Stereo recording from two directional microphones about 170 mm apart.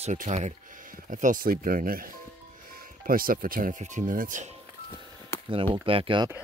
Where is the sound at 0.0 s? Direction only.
40° right (ahead or behind).